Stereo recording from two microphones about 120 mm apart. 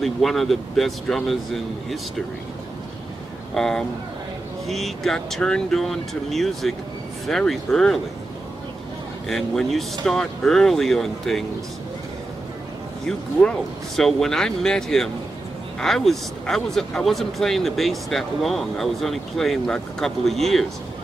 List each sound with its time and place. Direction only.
0.0 s speech: centre (ahead or behind)
3.5 s speech: 5° left (ahead or behind)
9.3 s speech: centre (ahead or behind)
13.9 s speech: 5° left (ahead or behind)